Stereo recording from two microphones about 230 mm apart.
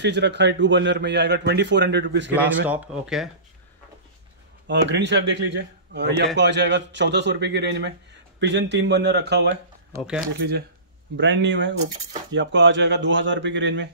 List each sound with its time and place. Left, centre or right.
0.0 s speech: right
2.3 s speech: centre
4.6 s speech: right
9.9 s speech: centre
11.1 s speech: right